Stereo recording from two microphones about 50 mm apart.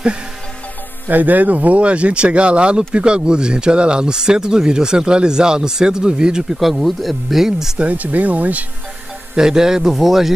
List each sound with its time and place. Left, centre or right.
1.0 s speech: right; by 6.6 s centre
6.6 s speech: centre
7.8 s speech: right
9.3 s speech: centre